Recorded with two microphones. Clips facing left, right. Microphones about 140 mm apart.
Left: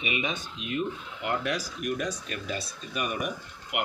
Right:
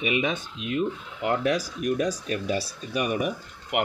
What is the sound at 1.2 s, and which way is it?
Speech, 35° right (ahead or behind).